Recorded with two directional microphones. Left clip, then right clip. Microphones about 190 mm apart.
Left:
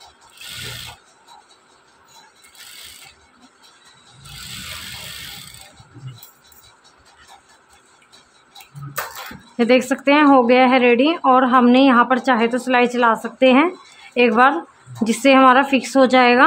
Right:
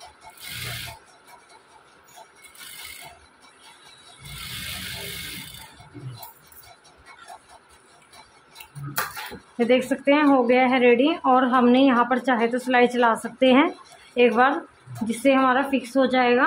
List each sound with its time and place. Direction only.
9.6 s a woman's voice: 25° left (ahead or behind)